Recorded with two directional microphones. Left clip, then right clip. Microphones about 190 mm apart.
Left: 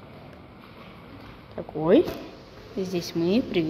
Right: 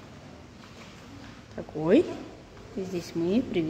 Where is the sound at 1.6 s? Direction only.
15° right (ahead or behind).